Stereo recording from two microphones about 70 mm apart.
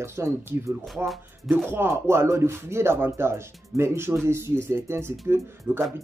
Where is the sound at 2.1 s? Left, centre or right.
Right.